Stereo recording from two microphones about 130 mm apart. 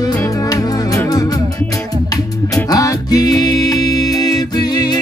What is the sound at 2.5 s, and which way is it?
Music, 30° left (ahead or behind).